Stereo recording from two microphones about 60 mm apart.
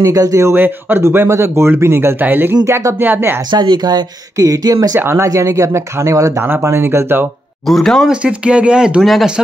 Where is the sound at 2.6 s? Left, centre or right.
Right.